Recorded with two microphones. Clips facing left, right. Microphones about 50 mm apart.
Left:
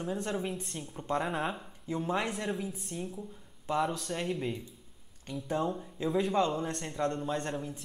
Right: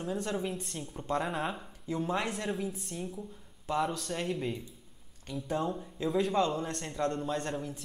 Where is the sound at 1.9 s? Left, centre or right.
Centre.